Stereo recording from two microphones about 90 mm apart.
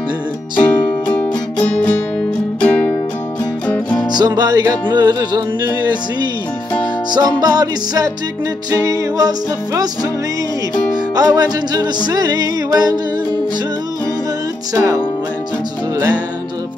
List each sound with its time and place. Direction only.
0.6 s music: 20° left (ahead or behind)
4.1 s music: 50° right (ahead or behind)
7.1 s music: 45° right (ahead or behind)
11.1 s music: 45° right (ahead or behind)
14.7 s music: 40° right (ahead or behind)